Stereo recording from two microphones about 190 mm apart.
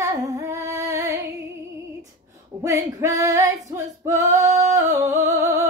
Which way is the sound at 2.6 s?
15° right (ahead or behind).